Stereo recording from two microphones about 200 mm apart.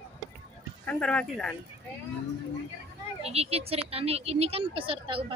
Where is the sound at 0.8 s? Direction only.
5° left (ahead or behind).